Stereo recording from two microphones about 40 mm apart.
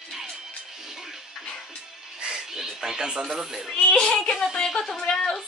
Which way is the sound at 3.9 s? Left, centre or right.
Left.